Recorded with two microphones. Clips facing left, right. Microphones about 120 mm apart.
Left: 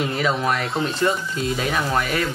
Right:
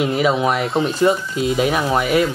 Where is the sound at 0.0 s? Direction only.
10° right (ahead or behind).